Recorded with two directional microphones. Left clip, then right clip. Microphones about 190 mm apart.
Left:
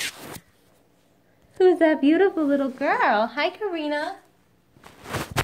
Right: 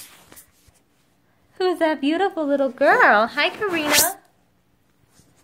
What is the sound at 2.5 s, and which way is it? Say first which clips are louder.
Speech: right 3 dB; 40° right (ahead or behind).